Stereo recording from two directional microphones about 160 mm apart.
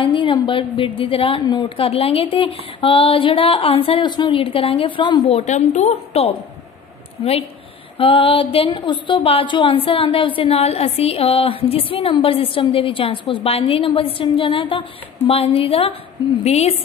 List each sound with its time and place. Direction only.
0.0 s a woman's voice: 30° left (ahead or behind)
5.4 s a woman's voice: 45° left (ahead or behind)
8.0 s a woman's voice: 35° left (ahead or behind)